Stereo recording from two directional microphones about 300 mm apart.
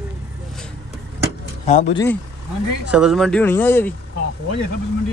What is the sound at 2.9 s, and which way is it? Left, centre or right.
Speech, centre.